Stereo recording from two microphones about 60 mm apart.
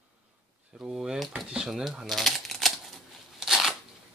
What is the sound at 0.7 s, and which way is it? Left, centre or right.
Speech, centre.